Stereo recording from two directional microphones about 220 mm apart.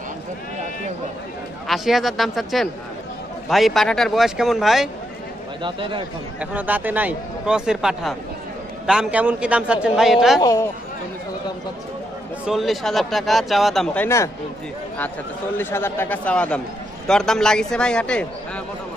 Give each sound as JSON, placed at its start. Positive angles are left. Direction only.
{"t": 1.7, "sound": "speech", "side_deg": 0}
{"t": 5.6, "sound": "speech", "side_deg": -20}
{"t": 6.4, "sound": "speech", "side_deg": -5}
{"t": 10.4, "sound": "speech", "side_deg": 15}
{"t": 12.4, "sound": "speech", "side_deg": 0}
{"t": 15.5, "sound": "speech", "side_deg": 10}